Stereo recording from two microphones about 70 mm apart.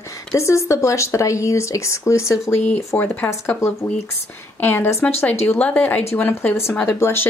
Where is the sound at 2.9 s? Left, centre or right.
Left.